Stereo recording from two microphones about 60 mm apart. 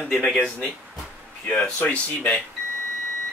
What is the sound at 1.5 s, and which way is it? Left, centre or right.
Speech, left.